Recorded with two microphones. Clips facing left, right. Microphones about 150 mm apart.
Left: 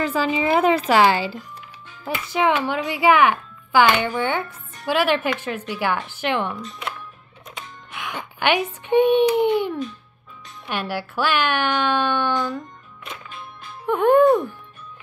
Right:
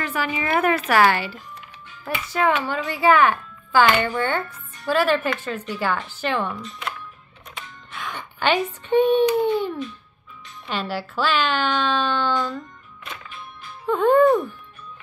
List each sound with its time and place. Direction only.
0.1 s a woman's voice: 25° left (ahead or behind)
7.5 s music: 10° left (ahead or behind)
8.4 s speech: 15° left (ahead or behind)
13.8 s speech: 15° left (ahead or behind)